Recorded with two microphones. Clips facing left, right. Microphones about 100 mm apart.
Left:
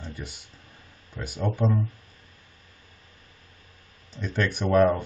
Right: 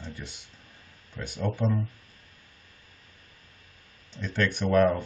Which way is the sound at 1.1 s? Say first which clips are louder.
Left 2 dB; 5° left (ahead or behind).